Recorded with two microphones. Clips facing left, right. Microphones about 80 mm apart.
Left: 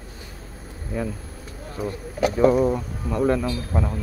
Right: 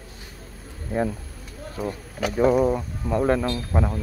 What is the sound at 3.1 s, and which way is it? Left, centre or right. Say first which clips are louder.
Speech: even; right.